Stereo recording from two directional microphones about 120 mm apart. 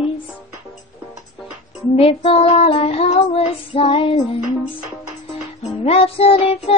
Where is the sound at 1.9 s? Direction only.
55° left (ahead or behind).